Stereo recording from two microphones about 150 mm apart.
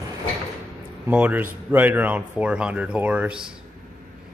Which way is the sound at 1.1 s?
10° right (ahead or behind).